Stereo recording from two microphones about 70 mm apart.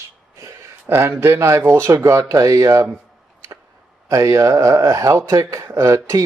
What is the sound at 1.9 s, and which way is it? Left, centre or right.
Speech, right.